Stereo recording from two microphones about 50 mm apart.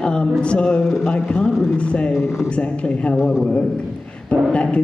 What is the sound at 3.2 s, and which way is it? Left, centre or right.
Speech, centre.